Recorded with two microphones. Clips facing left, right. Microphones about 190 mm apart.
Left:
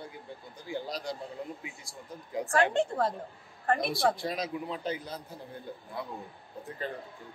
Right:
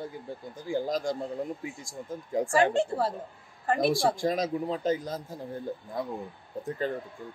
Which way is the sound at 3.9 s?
45° right (ahead or behind).